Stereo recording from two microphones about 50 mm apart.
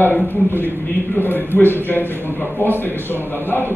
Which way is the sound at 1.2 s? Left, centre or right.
Left.